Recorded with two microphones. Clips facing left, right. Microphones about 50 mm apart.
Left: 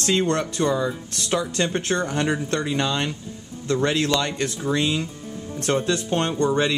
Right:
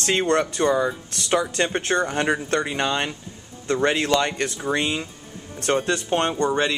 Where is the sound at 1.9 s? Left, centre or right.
Centre.